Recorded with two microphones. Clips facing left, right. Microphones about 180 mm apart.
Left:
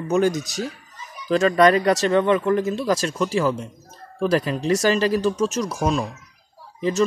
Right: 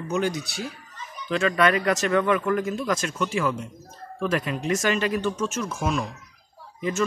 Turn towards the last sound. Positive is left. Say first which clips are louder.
# left 5 dB
turn(degrees=30)  # may be behind; listen again after turning